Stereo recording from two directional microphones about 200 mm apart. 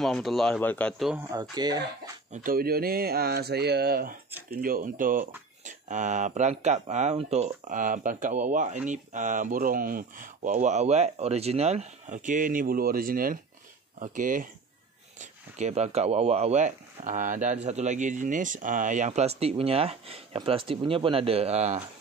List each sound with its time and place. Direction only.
0.0 s speech: centre (ahead or behind)
1.1 s speech: 20° right (ahead or behind)
2.3 s speech: 45° right (ahead or behind)